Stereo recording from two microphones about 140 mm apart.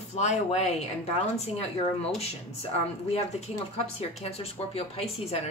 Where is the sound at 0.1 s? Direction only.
50° left (ahead or behind).